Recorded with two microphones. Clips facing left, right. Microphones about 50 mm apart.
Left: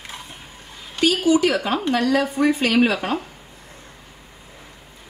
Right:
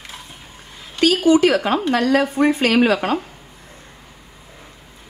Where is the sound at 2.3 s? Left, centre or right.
Right.